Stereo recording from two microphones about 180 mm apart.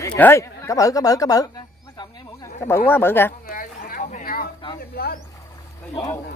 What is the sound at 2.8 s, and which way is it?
Speech, 10° left (ahead or behind).